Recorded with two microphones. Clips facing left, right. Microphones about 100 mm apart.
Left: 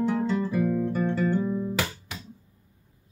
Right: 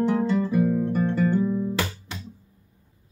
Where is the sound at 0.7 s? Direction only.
20° right (ahead or behind).